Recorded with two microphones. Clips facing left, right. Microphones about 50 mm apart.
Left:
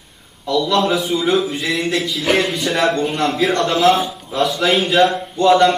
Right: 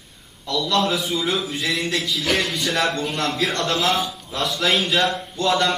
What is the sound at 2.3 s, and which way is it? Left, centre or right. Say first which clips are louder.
A man's voice: left 6 dB; centre.